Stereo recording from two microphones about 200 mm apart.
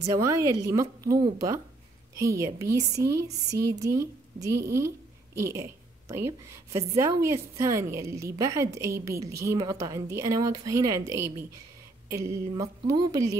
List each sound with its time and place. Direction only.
0.1 s a woman's voice: 15° right (ahead or behind)
3.4 s speech: 55° right (ahead or behind)
3.7 s a woman's voice: 15° right (ahead or behind)